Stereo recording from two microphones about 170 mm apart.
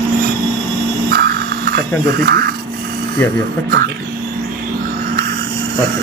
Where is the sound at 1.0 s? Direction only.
60° right (ahead or behind).